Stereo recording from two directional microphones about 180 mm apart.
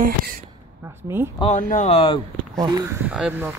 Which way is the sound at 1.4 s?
40° left (ahead or behind).